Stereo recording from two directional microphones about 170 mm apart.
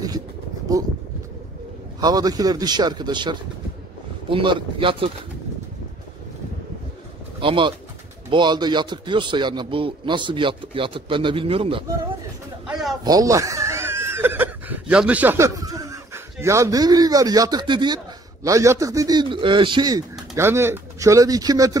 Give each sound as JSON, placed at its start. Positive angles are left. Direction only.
{"t": 2.0, "sound": "a man's voice", "side_deg": -20}
{"t": 7.3, "sound": "a man's voice", "side_deg": -30}
{"t": 12.6, "sound": "a sound", "side_deg": -5}
{"t": 13.0, "sound": "a man's voice", "side_deg": -20}